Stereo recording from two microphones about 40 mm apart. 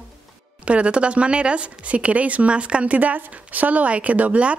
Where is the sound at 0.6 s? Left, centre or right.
Right.